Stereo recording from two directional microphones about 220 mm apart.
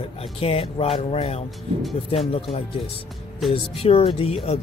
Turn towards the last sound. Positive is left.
turn(degrees=25)  # may be behind; listen again after turning